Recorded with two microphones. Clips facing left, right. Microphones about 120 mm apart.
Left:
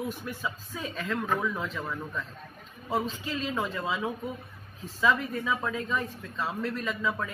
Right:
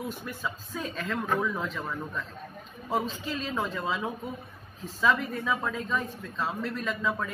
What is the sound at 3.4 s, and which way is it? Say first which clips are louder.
A man's voice: left 1 dB; 5° left (ahead or behind).